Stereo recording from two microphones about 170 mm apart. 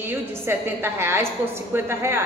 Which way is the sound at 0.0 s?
10° right (ahead or behind).